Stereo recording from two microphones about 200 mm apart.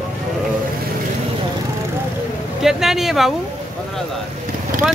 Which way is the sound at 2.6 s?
Centre (ahead or behind).